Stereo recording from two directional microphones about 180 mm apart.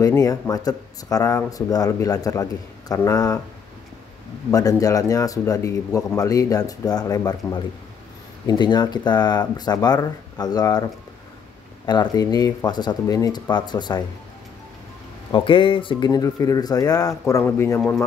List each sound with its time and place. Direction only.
0.2 s speech: 20° left (ahead or behind)
4.5 s speech: 20° left (ahead or behind)
15.3 s a man's voice: 30° left (ahead or behind); by 18.0 s 10° left (ahead or behind)